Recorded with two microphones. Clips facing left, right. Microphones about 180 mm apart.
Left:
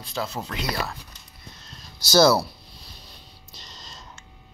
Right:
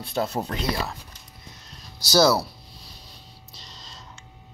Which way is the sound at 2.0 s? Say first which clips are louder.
Left 2 dB; 5° right (ahead or behind).